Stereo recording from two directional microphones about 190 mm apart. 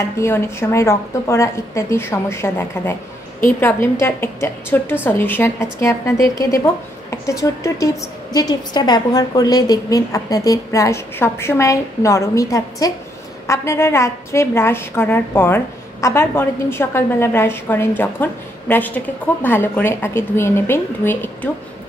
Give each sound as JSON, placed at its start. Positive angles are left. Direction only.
{"t": 0.2, "sound": "a woman's voice", "side_deg": 15}